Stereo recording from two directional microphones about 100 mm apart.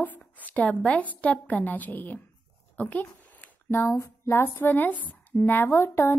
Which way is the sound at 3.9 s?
30° left (ahead or behind).